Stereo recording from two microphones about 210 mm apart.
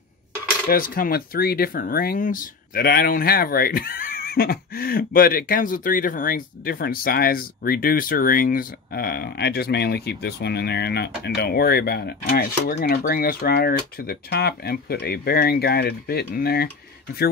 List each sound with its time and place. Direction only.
0.7 s speech: 45° left (ahead or behind)